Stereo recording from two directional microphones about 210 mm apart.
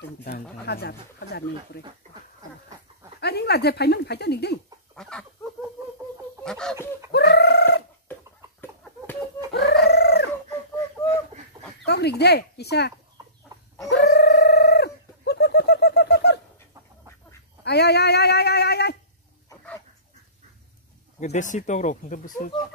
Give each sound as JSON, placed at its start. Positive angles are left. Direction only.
{"t": 0.2, "sound": "speech", "side_deg": 50}
{"t": 3.2, "sound": "speech", "side_deg": 50}
{"t": 4.9, "sound": "chicken", "side_deg": 5}
{"t": 6.4, "sound": "fowl", "side_deg": 5}
{"t": 7.1, "sound": "a sound", "side_deg": 50}
{"t": 9.5, "sound": "chicken", "side_deg": 50}
{"t": 9.8, "sound": "a sound", "side_deg": 50}
{"t": 11.8, "sound": "speech", "side_deg": 50}
{"t": 13.8, "sound": "bird", "side_deg": 55}
{"t": 17.6, "sound": "a sound", "side_deg": 50}
{"t": 21.2, "sound": "speech", "side_deg": 35}